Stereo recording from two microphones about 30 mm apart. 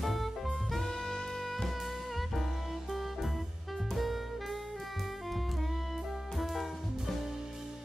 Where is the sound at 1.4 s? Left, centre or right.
Centre.